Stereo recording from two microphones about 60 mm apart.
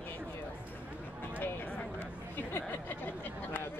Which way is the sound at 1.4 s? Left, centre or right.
Left.